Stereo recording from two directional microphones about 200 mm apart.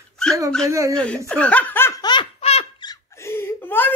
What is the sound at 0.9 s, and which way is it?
Speech, 5° left (ahead or behind).